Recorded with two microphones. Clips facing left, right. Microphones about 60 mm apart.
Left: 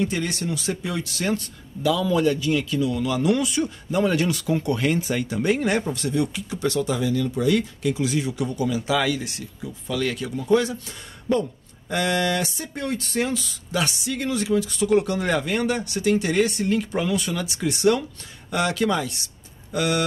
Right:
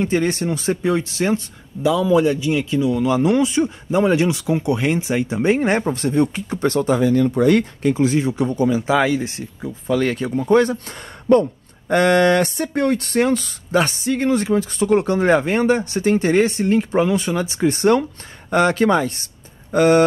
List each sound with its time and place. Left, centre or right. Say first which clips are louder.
0.0 s speech: right 6 dB; right